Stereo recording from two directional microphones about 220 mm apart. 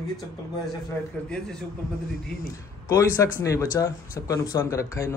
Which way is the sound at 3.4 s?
15° left (ahead or behind).